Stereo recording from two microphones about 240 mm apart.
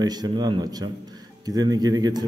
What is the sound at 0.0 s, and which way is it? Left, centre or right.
A man's voice, centre.